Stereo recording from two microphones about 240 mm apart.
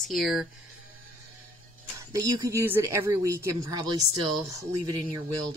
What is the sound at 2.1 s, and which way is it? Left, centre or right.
Speech, centre.